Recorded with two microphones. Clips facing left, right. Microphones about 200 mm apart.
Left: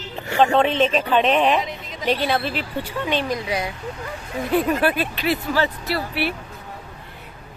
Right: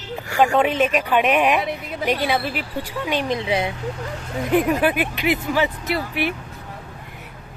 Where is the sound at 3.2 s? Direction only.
25° right (ahead or behind).